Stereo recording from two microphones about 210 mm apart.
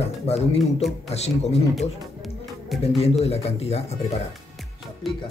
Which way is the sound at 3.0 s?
30° left (ahead or behind).